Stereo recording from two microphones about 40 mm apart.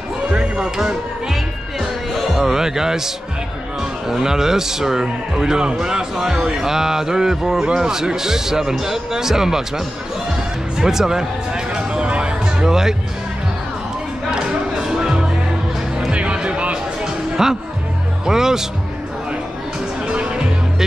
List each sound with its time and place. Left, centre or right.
0.3 s music: right
0.7 s music: centre
2.1 s a man's voice: centre
4.1 s speech: centre
11.7 s music: right
12.6 s speech: centre
14.8 s music: centre
16.1 s music: right
17.0 s a sound: centre
18.2 s speech: centre
20.1 s music: right